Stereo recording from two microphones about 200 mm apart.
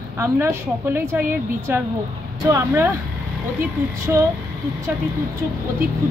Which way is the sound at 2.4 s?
10° right (ahead or behind).